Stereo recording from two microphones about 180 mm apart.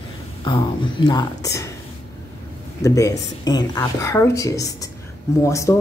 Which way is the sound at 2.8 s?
20° left (ahead or behind).